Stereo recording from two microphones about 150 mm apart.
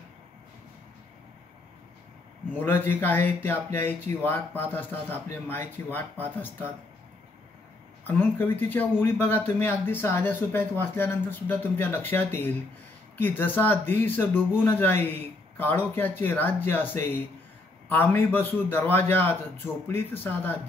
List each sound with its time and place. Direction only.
2.6 s speech: 15° left (ahead or behind)
8.1 s speech: 10° left (ahead or behind)